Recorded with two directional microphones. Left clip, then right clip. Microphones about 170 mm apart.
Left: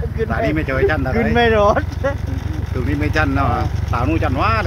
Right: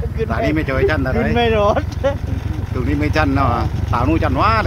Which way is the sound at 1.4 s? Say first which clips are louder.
Left 2 dB; 15° left (ahead or behind).